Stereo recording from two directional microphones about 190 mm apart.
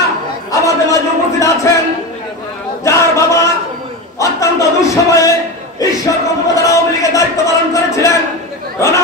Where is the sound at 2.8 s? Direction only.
15° left (ahead or behind).